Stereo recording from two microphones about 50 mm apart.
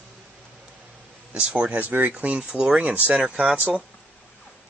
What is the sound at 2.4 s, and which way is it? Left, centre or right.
Speech, centre.